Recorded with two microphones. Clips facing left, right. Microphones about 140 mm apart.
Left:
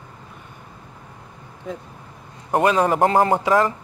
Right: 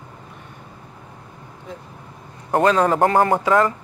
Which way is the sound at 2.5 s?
15° left (ahead or behind).